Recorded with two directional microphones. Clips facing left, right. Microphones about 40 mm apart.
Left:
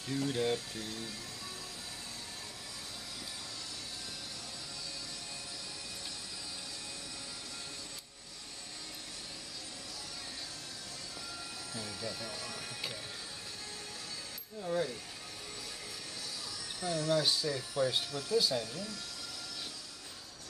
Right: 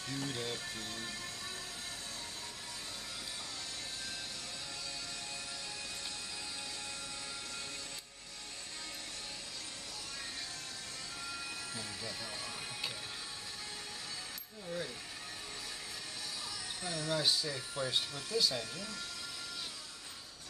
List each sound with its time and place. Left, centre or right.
0.2 s speech: left
12.0 s speech: centre
14.6 s speech: left
16.8 s speech: right
17.2 s speech: centre